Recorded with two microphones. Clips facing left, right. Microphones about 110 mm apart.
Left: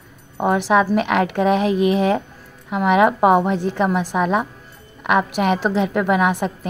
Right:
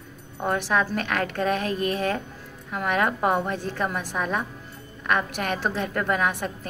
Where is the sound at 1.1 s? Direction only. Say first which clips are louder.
Left 6 dB; 15° left (ahead or behind).